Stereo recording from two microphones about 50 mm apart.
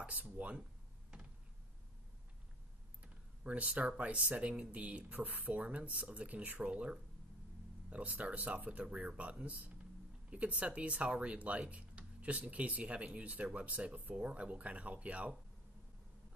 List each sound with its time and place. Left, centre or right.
0.0 s speech: right
3.0 s speech: right